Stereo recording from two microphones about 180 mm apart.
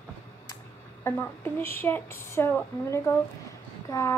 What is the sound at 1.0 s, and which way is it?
Speech, 15° left (ahead or behind).